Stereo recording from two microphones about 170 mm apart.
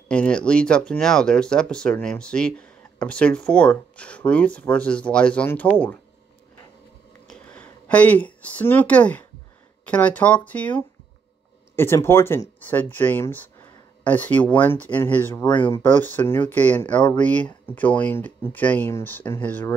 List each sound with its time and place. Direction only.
0.1 s speech: 5° left (ahead or behind)
7.2 s a sound: 5° left (ahead or behind)
9.8 s speech: 10° left (ahead or behind)
15.4 s speech: 25° left (ahead or behind)
15.7 s speech: 10° left (ahead or behind)